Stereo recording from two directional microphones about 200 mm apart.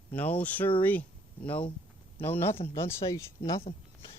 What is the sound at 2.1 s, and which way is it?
Speech, 10° left (ahead or behind).